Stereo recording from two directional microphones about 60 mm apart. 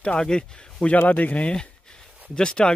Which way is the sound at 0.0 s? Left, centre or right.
Centre.